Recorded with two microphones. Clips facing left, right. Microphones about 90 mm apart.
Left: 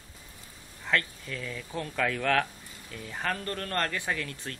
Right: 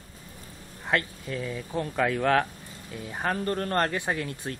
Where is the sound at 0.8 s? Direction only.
25° right (ahead or behind).